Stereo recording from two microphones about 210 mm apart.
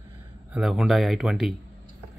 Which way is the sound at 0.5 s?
5° right (ahead or behind).